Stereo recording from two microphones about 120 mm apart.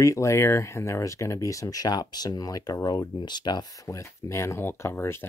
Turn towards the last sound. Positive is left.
turn(degrees=20)  # may be behind; listen again after turning